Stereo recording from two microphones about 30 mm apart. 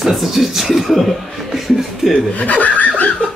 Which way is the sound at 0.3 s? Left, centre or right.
Centre.